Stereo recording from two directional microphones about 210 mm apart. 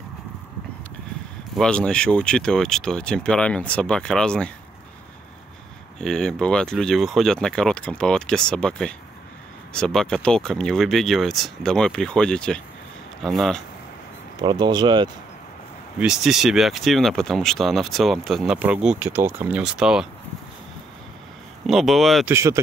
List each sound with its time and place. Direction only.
1.5 s speech: 5° left (ahead or behind)
5.9 s speech: 5° left (ahead or behind)
14.4 s speech: 20° right (ahead or behind)
16.0 s speech: centre (ahead or behind)
21.6 s speech: centre (ahead or behind)
22.3 s speech: 15° right (ahead or behind)